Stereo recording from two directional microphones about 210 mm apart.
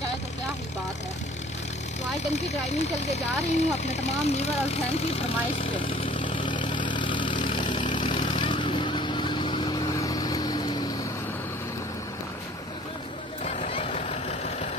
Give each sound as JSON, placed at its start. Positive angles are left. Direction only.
{"t": 3.1, "sound": "vehicle", "side_deg": 35}
{"t": 13.4, "sound": "vehicle", "side_deg": 30}